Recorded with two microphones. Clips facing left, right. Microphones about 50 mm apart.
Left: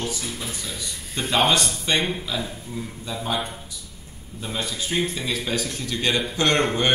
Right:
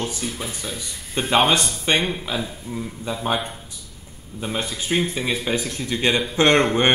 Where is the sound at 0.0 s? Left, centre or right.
Right.